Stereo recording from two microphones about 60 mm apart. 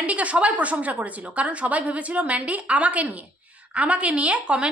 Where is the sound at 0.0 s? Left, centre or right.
Right.